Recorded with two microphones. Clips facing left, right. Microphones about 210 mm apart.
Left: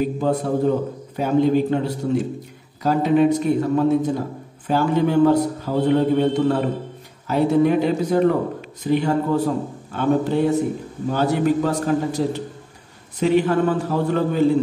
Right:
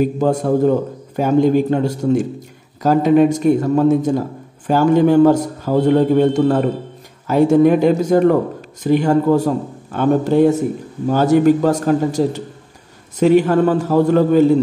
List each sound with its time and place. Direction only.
0.2 s speech: 45° right (ahead or behind)